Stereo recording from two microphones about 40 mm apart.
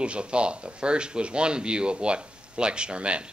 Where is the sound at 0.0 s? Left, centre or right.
Right.